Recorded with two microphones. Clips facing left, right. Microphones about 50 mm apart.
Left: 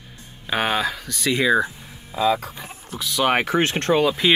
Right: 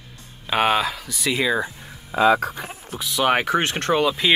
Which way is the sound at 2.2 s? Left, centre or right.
Right.